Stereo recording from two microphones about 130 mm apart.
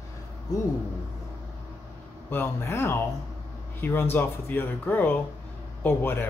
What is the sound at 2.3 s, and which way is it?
Speech, 15° left (ahead or behind).